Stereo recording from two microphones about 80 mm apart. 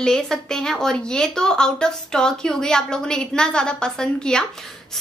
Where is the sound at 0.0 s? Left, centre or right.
Centre.